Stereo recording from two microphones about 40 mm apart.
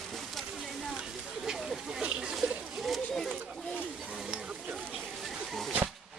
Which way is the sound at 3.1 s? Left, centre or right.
Centre.